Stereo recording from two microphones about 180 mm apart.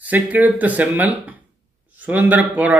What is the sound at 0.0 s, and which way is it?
A man's voice, 10° right (ahead or behind).